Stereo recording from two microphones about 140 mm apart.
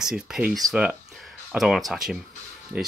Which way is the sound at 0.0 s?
5° right (ahead or behind).